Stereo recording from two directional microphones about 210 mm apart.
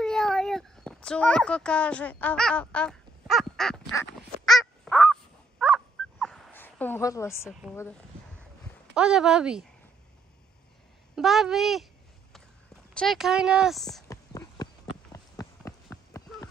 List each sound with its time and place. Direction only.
0.0 s a sound: centre (ahead or behind)
4.5 s crow: centre (ahead or behind)
8.9 s speech: 5° right (ahead or behind)
11.1 s speech: centre (ahead or behind)
12.9 s speech: centre (ahead or behind)
14.0 s clip-clop: 15° left (ahead or behind)